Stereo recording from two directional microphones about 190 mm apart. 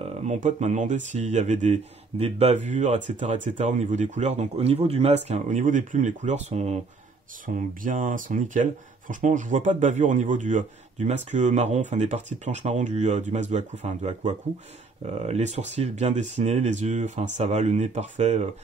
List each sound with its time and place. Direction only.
0.3 s speech: 40° right (ahead or behind)